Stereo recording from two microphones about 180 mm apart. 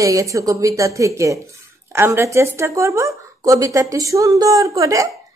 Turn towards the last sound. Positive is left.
turn(degrees=-20)  # may be behind; listen again after turning